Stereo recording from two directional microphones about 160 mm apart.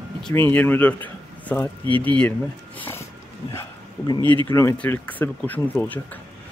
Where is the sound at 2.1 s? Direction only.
10° left (ahead or behind).